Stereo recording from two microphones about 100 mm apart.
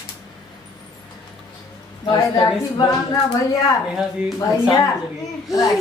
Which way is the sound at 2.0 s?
45° left (ahead or behind).